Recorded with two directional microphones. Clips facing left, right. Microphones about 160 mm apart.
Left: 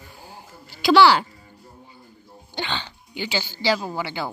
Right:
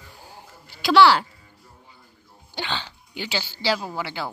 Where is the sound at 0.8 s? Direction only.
Centre (ahead or behind).